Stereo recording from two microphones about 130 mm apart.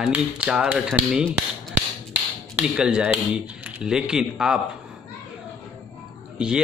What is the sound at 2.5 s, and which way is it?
Speech, 5° right (ahead or behind).